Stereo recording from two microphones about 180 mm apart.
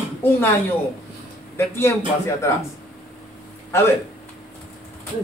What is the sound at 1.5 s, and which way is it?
Speech, 15° left (ahead or behind).